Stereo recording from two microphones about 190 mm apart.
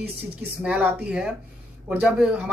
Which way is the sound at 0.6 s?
5° right (ahead or behind).